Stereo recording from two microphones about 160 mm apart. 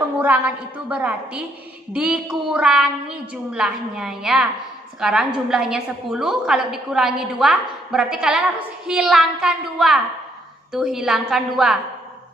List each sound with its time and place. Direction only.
0.8 s a woman's voice: 10° right (ahead or behind)